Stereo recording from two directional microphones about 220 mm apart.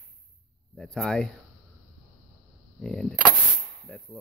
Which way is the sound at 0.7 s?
Centre (ahead or behind).